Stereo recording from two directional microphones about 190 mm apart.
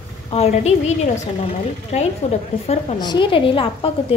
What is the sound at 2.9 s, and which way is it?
A woman's voice, 25° left (ahead or behind).